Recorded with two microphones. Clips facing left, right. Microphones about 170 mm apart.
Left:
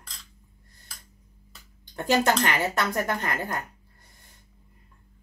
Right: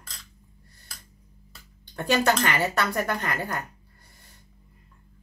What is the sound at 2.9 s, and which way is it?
Speech, 20° left (ahead or behind).